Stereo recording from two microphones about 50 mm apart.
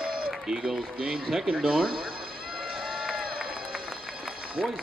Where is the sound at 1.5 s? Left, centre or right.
Centre.